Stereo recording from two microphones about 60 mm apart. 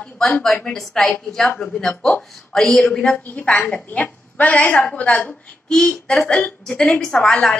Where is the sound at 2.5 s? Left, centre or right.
Centre; by 5.3 s left.